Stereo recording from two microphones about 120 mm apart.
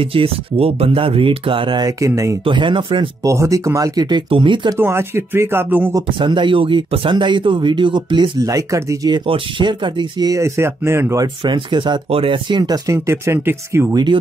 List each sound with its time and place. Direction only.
0.0 s speech: 50° right (ahead or behind)
1.9 s speech: 25° right (ahead or behind)
2.4 s speech: 45° right (ahead or behind)
3.3 s speech: 25° right (ahead or behind); by 4.7 s 45° right (ahead or behind)
4.7 s speech: 20° right (ahead or behind)
6.1 s speech: 40° right (ahead or behind)
8.4 s speech: 25° right (ahead or behind)
9.1 s speech: 45° right (ahead or behind); by 11.2 s 20° right (ahead or behind)
11.4 s speech: 40° right (ahead or behind); by 13.9 s 20° right (ahead or behind)